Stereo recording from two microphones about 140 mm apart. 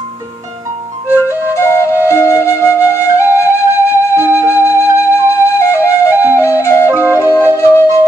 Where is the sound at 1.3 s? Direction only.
20° left (ahead or behind).